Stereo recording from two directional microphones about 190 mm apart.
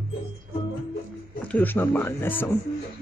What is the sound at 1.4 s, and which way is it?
Speech, 10° left (ahead or behind).